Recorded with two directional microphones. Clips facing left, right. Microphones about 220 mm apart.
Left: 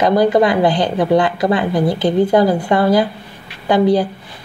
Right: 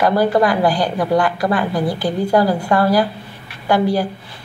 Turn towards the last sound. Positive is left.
turn(degrees=20)  # may be behind; listen again after turning